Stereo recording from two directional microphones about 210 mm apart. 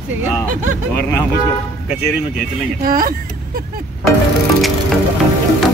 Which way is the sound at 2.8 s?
45° right (ahead or behind).